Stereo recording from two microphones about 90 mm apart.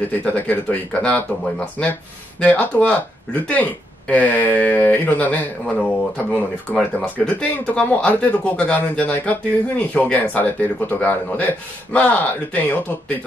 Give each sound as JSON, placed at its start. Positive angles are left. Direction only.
{"t": 0.1, "sound": "speech", "side_deg": 20}